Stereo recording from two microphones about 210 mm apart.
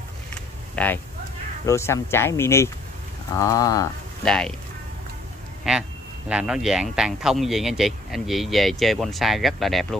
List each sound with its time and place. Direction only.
0.3 s a sound: 5° left (ahead or behind)
1.7 s speech: 10° left (ahead or behind)
4.2 s speech: 5° left (ahead or behind)
5.6 s speech: 5° right (ahead or behind)